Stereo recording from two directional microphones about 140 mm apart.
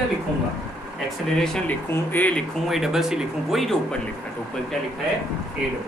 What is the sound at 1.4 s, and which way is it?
Speech, 5° left (ahead or behind).